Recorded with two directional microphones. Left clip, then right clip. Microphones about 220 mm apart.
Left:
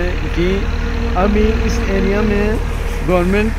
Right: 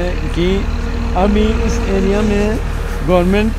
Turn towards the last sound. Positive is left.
turn(degrees=-55)  # may be behind; listen again after turning